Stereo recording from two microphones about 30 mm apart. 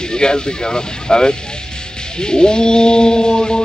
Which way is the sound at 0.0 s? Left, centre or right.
Left.